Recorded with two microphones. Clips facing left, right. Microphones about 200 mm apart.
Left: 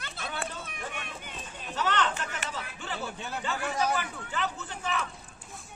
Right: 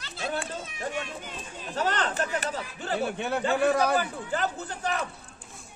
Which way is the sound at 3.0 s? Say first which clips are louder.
Right 10 dB; 65° right (ahead or behind).